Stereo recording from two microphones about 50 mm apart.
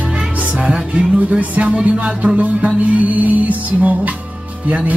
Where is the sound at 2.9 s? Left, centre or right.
Right.